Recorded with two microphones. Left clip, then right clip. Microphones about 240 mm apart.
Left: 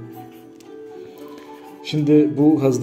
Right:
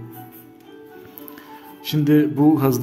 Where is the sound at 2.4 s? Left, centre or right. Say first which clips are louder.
Left 1 dB; right.